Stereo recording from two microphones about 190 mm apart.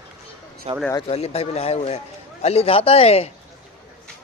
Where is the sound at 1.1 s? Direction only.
35° left (ahead or behind).